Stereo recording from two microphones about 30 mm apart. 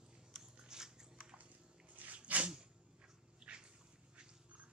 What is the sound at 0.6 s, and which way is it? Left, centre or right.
Scissors, right.